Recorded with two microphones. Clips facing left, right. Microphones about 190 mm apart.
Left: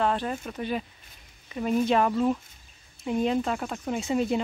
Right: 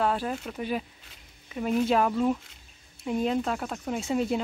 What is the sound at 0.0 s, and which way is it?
Speech, 5° right (ahead or behind).